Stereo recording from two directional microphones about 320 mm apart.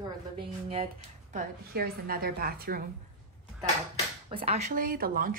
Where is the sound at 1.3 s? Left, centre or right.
Right.